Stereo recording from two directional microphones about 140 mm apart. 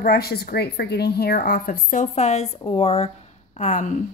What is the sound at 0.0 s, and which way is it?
Speech, 90° left.